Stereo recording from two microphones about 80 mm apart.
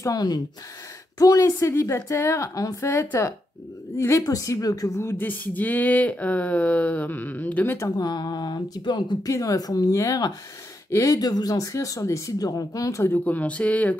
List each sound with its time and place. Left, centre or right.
0.0 s speech: left
2.3 s speech: left
2.9 s speech: left
5.2 s speech: left
8.0 s speech: left
9.3 s speech: left
11.1 s speech: left
13.2 s speech: centre